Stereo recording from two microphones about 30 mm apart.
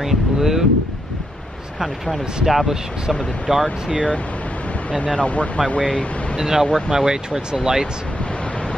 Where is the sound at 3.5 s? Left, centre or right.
Right.